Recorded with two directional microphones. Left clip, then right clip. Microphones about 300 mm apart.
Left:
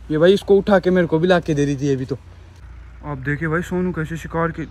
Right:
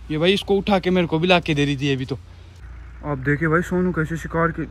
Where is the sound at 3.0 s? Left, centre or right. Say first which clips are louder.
Right 3 dB; centre.